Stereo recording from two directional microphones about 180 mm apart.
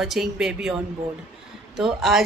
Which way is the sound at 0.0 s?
Centre (ahead or behind).